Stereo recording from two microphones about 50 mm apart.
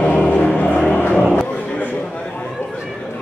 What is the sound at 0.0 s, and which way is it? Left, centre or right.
Music, left.